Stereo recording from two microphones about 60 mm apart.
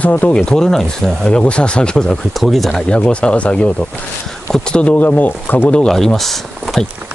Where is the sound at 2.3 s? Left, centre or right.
Centre.